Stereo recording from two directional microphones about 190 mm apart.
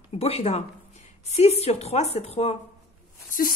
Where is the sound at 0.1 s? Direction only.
35° left (ahead or behind).